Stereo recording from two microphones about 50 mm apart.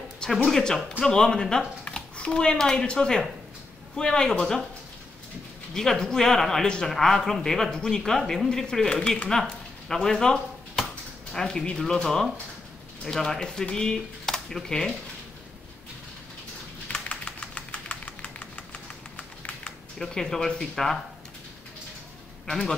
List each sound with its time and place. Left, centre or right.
0.5 s speech: centre
5.8 s speech: centre
9.3 s a sound: centre
11.3 s speech: centre
16.8 s a sound: left
20.0 s speech: centre